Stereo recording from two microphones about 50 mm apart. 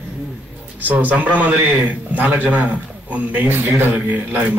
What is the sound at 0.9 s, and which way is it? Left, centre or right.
A woman's voice, right.